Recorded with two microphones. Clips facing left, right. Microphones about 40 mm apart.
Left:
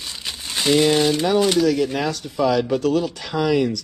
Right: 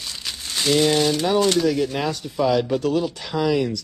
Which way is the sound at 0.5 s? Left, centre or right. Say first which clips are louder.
Left 2 dB; centre.